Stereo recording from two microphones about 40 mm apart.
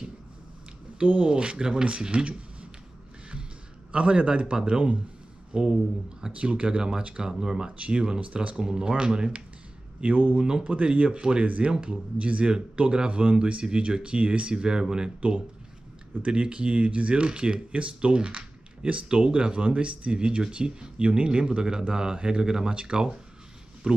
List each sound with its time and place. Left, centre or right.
1.0 s speech: right
1.3 s speech: right
3.9 s speech: right
6.3 s speech: right
7.2 s speech: centre
10.1 s speech: right
10.4 s speech: right
11.4 s speech: right
20.2 s speech: right